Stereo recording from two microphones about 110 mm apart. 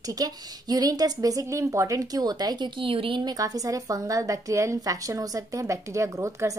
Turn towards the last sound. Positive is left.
turn(degrees=-25)  # may be behind; listen again after turning